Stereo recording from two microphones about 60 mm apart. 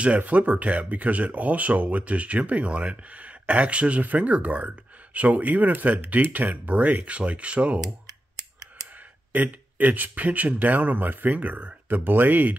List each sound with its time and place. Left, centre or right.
0.0 s speech: right
7.8 s scissors: right
9.3 s speech: right